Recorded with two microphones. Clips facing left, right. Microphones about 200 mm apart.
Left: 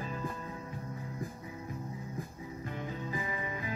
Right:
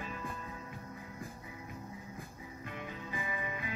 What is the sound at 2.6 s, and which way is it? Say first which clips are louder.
Music: left 4 dB; 35° left (ahead or behind).